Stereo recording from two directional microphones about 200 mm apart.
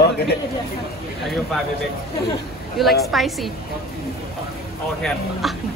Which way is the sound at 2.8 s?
Centre (ahead or behind).